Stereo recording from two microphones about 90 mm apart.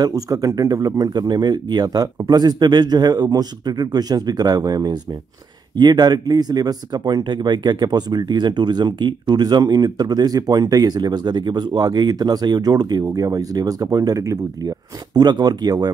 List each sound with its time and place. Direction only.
0.0 s speech: 40° right (ahead or behind)